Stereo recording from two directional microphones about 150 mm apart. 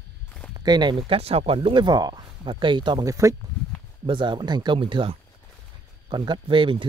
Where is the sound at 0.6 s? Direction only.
30° right (ahead or behind).